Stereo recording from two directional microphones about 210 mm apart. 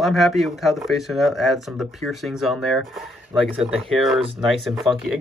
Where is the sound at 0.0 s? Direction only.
Centre (ahead or behind).